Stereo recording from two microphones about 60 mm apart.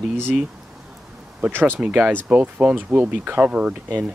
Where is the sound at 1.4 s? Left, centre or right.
Right.